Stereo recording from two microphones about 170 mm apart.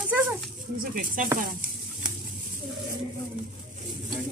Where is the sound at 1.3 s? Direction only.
50° right (ahead or behind).